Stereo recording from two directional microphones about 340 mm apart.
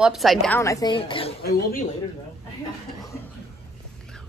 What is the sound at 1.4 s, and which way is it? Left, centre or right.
Speech, left.